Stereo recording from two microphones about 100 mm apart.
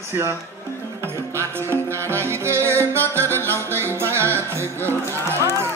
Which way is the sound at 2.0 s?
25° right (ahead or behind).